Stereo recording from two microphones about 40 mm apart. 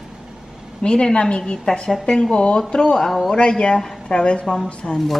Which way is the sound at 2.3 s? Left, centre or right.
Left.